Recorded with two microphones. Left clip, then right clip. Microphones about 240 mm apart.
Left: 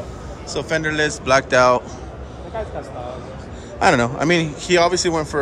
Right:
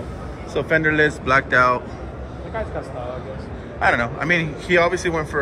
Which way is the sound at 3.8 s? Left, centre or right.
Left.